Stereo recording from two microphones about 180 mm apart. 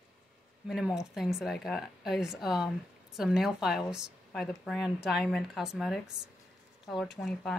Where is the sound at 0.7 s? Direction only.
5° right (ahead or behind).